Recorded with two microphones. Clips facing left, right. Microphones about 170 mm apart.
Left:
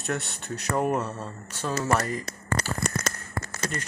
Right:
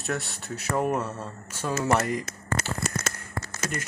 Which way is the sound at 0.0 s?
Centre (ahead or behind).